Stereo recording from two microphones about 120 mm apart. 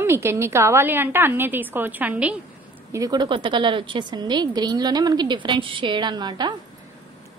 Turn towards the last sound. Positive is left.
turn(degrees=-35)  # may be behind; listen again after turning